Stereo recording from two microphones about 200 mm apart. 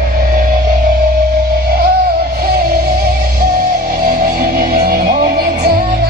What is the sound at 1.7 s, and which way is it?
Music, 50° right (ahead or behind).